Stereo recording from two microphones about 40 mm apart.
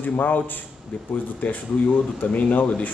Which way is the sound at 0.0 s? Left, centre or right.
Left.